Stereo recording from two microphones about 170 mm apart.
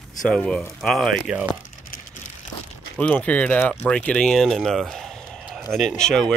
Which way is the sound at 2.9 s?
10° left (ahead or behind).